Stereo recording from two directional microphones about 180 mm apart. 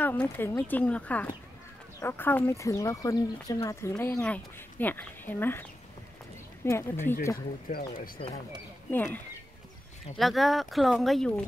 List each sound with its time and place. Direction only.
0.0 s speech: 10° left (ahead or behind)
7.3 s speech: 55° left (ahead or behind)
8.9 s speech: 10° left (ahead or behind)